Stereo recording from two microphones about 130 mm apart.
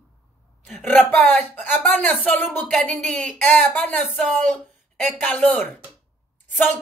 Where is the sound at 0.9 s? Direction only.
10° left (ahead or behind).